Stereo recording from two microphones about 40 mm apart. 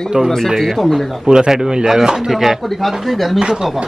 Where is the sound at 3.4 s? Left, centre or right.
Centre.